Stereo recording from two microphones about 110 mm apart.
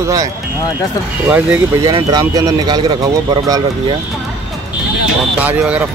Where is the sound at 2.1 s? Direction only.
35° right (ahead or behind).